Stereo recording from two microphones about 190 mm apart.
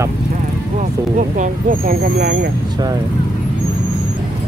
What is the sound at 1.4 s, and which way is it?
Speech, 50° right (ahead or behind).